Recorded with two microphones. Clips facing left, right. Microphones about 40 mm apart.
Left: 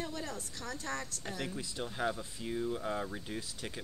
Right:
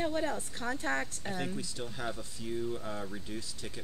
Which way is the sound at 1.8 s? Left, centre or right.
Centre.